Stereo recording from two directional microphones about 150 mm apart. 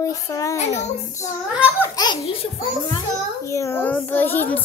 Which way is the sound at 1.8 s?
25° left (ahead or behind).